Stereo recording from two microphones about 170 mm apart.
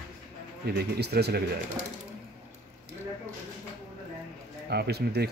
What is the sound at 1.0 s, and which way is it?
Speech, 70° right (ahead or behind).